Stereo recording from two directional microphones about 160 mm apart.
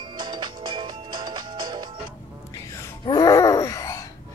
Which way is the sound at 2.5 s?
20° left (ahead or behind).